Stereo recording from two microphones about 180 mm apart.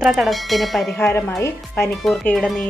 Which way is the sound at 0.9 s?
10° left (ahead or behind).